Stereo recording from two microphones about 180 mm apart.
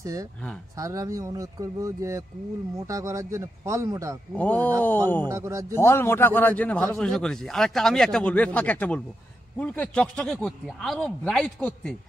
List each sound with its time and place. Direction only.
0.0 s speech: 20° right (ahead or behind)
4.3 s a man's voice: 10° left (ahead or behind)
5.3 s speech: 15° right (ahead or behind)
5.8 s a man's voice: 15° left (ahead or behind)